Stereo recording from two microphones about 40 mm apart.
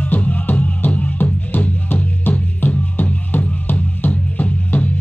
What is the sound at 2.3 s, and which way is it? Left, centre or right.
Music, left.